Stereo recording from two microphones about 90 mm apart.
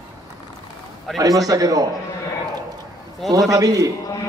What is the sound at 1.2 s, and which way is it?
Speech, 40° right (ahead or behind).